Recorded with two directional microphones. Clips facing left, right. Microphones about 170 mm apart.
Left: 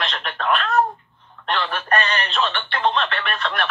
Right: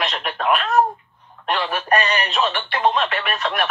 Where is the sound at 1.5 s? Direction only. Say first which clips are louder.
Right 1 dB; 15° right (ahead or behind).